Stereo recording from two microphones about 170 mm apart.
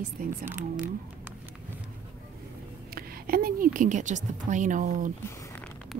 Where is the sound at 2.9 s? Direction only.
60° right (ahead or behind).